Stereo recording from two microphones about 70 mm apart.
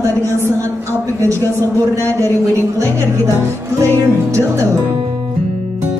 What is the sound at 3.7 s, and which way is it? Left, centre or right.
Music, right.